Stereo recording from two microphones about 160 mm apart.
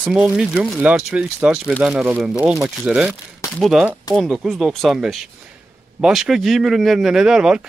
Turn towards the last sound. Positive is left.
turn(degrees=-5)  # may be behind; listen again after turning